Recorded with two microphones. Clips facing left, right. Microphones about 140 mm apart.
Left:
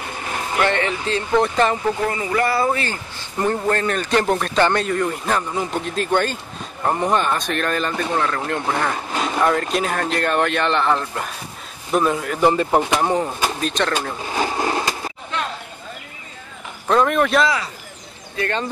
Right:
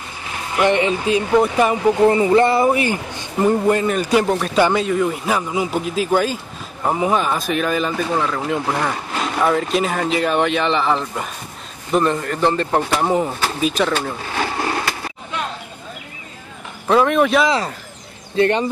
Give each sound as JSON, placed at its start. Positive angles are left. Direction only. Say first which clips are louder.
{"t": 0.6, "sound": "speech", "louder": "right 5 dB", "side_deg": -15}
{"t": 2.0, "sound": "speech", "louder": "right 8 dB", "side_deg": -25}
{"t": 13.0, "sound": "speech", "louder": "right 1 dB", "side_deg": 0}
{"t": 14.3, "sound": "a sound", "louder": "left 2 dB", "side_deg": 20}
{"t": 16.8, "sound": "speech", "louder": "right 2 dB", "side_deg": 0}
{"t": 18.3, "sound": "speech", "louder": "right 8 dB", "side_deg": -25}